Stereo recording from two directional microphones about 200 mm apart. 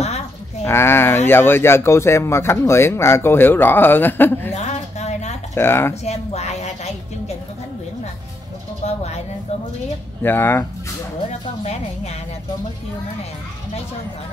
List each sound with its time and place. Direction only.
0.7 s speech: 10° left (ahead or behind)
4.6 s a sound: 35° left (ahead or behind)
5.5 s speech: 10° left (ahead or behind)
6.0 s a woman's voice: 35° left (ahead or behind)
8.8 s a woman's voice: 30° left (ahead or behind)
10.2 s speech: 10° left (ahead or behind)
11.6 s a woman's voice: 35° left (ahead or behind)